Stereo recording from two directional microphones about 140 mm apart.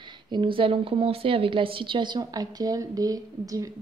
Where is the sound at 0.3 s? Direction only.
35° right (ahead or behind).